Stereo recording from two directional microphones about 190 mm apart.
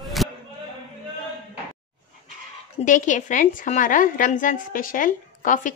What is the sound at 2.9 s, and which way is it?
A woman's voice, 40° left (ahead or behind).